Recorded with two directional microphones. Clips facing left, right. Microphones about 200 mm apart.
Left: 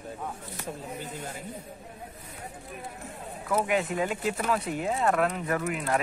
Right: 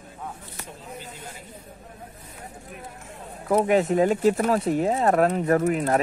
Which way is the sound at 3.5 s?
40° right (ahead or behind).